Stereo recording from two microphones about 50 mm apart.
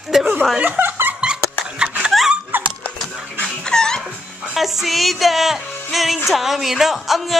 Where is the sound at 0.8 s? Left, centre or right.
Right.